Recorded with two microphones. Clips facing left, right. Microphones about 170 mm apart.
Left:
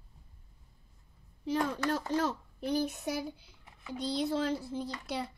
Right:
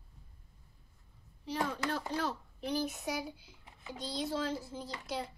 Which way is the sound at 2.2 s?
45° left (ahead or behind).